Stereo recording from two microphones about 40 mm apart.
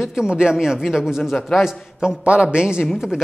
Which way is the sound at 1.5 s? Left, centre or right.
Centre.